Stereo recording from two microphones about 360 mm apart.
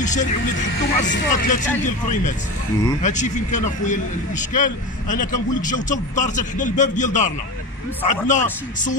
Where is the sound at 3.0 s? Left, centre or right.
Centre.